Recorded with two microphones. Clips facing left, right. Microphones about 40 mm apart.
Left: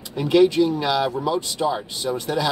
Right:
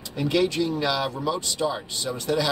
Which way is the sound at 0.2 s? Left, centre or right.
Centre.